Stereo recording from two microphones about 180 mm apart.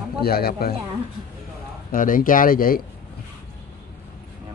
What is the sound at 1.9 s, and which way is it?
Speech, 50° left (ahead or behind).